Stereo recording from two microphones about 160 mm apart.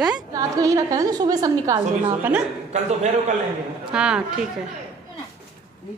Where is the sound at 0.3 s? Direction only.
20° right (ahead or behind).